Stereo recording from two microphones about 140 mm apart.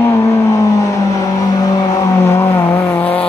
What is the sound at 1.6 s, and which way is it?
Vehicle, 20° left (ahead or behind).